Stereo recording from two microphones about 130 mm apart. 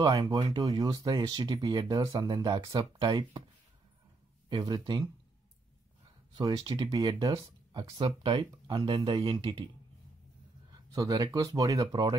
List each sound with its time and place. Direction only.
0.0 s speech: 35° right (ahead or behind)
4.5 s speech: 35° right (ahead or behind)
6.3 s speech: 30° right (ahead or behind)
10.9 s speech: 30° right (ahead or behind)